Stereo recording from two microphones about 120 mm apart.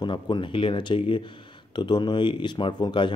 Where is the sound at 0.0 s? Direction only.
40° left (ahead or behind).